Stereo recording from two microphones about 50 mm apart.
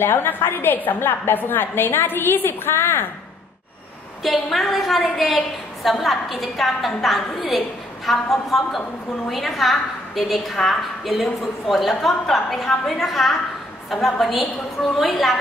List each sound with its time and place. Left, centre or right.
0.0 s a woman's voice: left
4.2 s a woman's voice: centre